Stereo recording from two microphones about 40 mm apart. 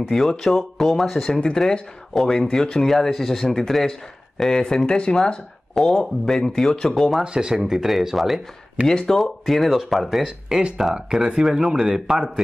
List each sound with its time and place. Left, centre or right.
0.1 s speech: centre
1.4 s speech: centre
5.8 s speech: centre
7.0 s speech: centre
7.2 s speech: centre
7.5 s speech: centre
8.8 s speech: centre
9.2 s speech: centre
10.2 s speech: centre
10.8 s speech: centre